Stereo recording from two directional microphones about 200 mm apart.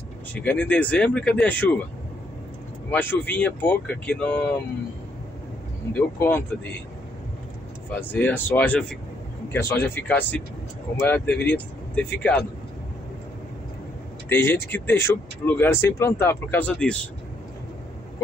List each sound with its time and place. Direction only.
0.3 s speech: 5° left (ahead or behind)
2.9 s speech: 10° left (ahead or behind)
5.9 s speech: 10° left (ahead or behind)
7.9 s speech: 10° left (ahead or behind)
14.3 s speech: 10° left (ahead or behind)